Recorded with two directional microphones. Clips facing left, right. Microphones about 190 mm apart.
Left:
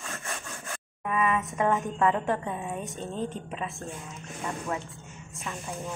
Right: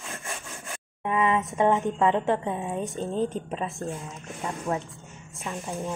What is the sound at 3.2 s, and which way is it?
Speech, 35° right (ahead or behind).